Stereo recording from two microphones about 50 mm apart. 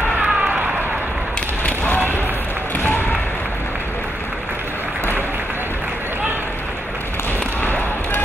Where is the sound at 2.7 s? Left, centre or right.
Left.